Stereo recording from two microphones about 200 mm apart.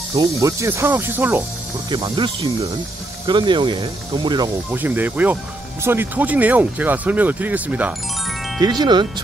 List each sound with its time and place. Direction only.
0.1 s speech: 20° right (ahead or behind)
1.9 s speech: 25° right (ahead or behind)
4.7 s speech: 10° right (ahead or behind)
8.5 s speech: 20° right (ahead or behind)